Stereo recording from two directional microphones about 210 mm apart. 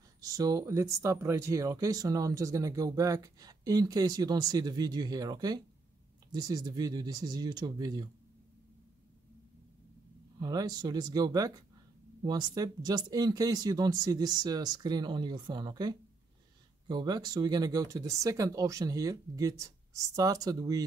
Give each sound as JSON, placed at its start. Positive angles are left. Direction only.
{"t": 0.2, "sound": "speech", "side_deg": -15}
{"t": 10.4, "sound": "speech", "side_deg": -20}